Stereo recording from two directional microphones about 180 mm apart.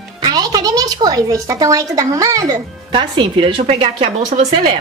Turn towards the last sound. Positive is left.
turn(degrees=-30)  # may be behind; listen again after turning